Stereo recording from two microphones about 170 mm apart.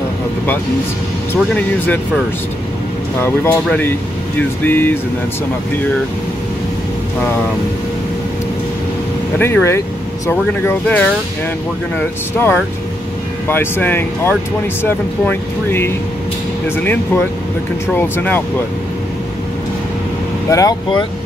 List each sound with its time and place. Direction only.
1.3 s speech: 10° left (ahead or behind)
3.2 s speech: 10° left (ahead or behind)
9.4 s speech: 15° left (ahead or behind)
20.4 s speech: 20° left (ahead or behind)